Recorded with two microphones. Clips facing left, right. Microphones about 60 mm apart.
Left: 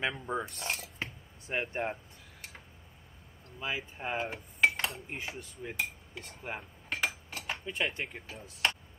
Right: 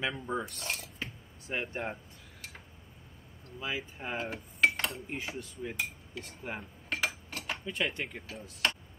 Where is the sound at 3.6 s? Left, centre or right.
Centre.